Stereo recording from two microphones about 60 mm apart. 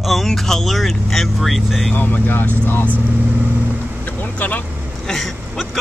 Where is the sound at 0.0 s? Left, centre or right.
Centre.